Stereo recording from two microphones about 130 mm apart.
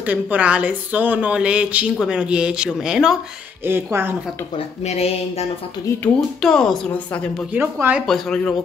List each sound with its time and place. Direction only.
0.0 s a woman's voice: 10° right (ahead or behind)
3.6 s a woman's voice: 15° right (ahead or behind)
4.6 s speech: 50° left (ahead or behind)
6.4 s a woman's voice: 5° left (ahead or behind)
7.5 s a woman's voice: 15° right (ahead or behind)
8.1 s a woman's voice: 5° left (ahead or behind)